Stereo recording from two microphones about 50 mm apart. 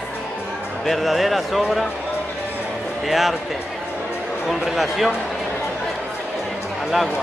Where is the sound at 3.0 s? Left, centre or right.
Centre.